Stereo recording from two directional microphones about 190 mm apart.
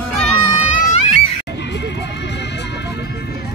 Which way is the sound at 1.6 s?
65° left (ahead or behind).